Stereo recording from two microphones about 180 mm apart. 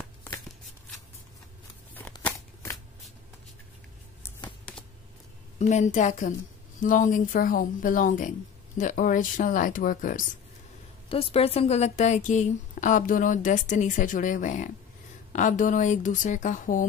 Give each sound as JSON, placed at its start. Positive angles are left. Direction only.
{"t": 2.2, "sound": "shuffling cards", "side_deg": 15}
{"t": 5.6, "sound": "a woman's voice", "side_deg": 40}
{"t": 11.1, "sound": "a woman's voice", "side_deg": 30}